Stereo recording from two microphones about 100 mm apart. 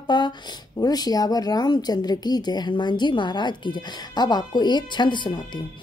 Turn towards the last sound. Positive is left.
turn(degrees=50)  # may be behind; listen again after turning